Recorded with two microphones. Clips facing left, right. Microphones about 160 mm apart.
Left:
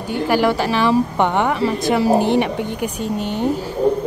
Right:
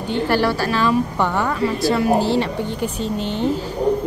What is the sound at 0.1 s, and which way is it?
A woman's voice, 15° left (ahead or behind).